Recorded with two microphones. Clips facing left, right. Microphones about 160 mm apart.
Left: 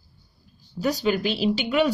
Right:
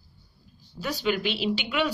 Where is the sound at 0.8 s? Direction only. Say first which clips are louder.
Left 4 dB; 40° left (ahead or behind).